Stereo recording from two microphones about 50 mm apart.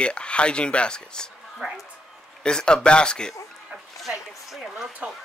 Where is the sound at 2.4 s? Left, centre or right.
Centre.